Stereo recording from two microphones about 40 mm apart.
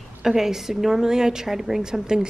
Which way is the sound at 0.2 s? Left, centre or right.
Centre.